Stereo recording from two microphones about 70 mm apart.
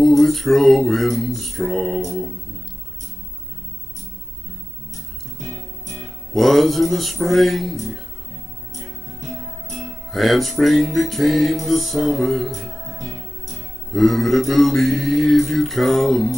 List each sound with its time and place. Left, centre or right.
0.0 s music: centre
5.4 s music: right
6.3 s music: centre
8.7 s music: right
9.8 s music: centre
13.0 s music: right
13.9 s music: centre